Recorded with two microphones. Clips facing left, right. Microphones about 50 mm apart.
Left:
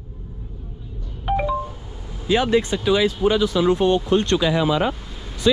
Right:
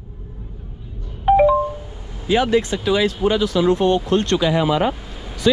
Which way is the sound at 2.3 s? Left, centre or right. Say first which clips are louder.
Right 1 dB; right.